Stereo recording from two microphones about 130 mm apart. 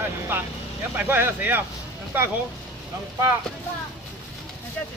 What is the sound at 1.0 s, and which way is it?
Speech, 15° right (ahead or behind).